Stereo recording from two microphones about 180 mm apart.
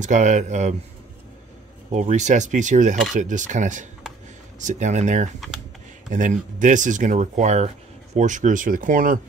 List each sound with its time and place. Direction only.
0.0 s speech: 40° right (ahead or behind)
1.9 s speech: 40° right (ahead or behind)